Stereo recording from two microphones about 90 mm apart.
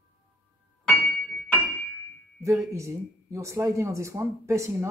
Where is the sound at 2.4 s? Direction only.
35° right (ahead or behind).